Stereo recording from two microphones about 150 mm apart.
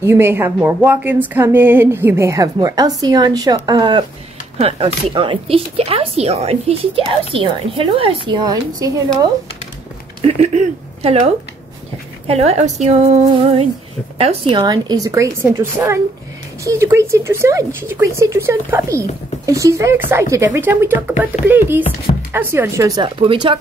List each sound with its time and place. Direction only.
0.0 s a woman's voice: 15° right (ahead or behind)
4.6 s speech: 40° right (ahead or behind); by 9.0 s 25° right (ahead or behind)
10.2 s a woman's voice: 50° right (ahead or behind)
14.6 s a woman's voice: 25° right (ahead or behind)